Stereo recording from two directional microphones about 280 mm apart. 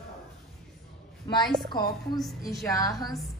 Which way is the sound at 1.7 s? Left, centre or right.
Centre.